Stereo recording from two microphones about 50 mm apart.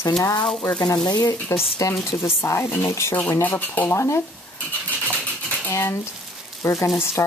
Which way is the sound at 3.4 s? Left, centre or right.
Left.